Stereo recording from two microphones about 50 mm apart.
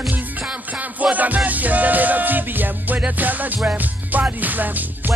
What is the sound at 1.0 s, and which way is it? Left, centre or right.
Music, right.